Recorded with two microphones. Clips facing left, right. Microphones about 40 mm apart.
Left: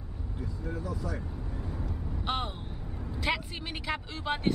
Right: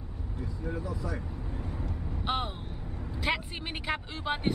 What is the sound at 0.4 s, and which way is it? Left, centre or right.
Speech, right.